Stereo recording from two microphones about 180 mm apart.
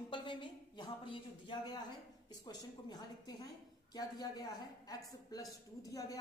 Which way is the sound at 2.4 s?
20° left (ahead or behind).